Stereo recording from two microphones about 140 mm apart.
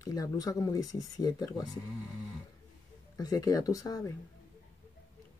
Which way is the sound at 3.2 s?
25° left (ahead or behind).